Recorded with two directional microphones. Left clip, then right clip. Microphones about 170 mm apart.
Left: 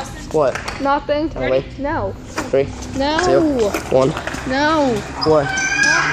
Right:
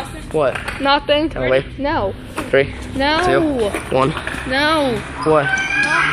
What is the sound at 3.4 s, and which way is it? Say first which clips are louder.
Speech: left 1 dB; 25° left (ahead or behind).